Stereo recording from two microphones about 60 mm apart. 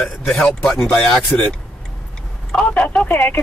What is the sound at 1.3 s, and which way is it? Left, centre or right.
Speech, left.